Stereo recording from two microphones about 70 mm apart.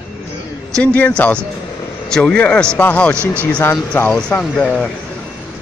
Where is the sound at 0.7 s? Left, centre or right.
Centre.